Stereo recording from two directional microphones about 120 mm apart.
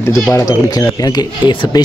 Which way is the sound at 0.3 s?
30° left (ahead or behind).